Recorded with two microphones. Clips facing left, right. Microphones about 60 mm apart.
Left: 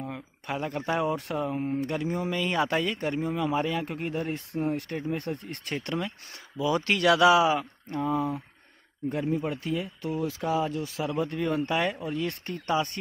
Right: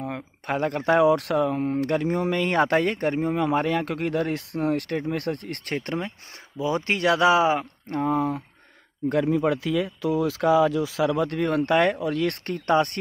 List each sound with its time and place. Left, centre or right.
0.0 s speech: right
2.0 s speech: right
5.8 s speech: right
7.9 s speech: right
9.1 s speech: right